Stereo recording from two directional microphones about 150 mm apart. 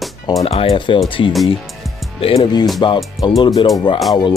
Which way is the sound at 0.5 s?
40° left (ahead or behind).